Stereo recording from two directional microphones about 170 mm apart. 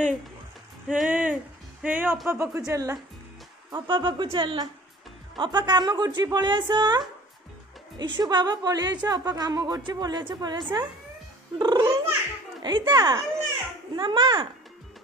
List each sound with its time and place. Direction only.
0.8 s a woman's voice: 5° right (ahead or behind); by 14.5 s 30° right (ahead or behind)